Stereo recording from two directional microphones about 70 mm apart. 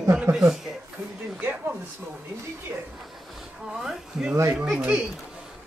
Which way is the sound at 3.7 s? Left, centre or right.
Centre.